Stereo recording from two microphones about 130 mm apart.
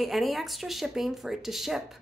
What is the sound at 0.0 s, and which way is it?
A woman's voice, centre (ahead or behind).